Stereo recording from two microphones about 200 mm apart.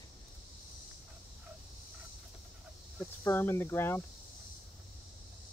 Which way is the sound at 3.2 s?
10° left (ahead or behind).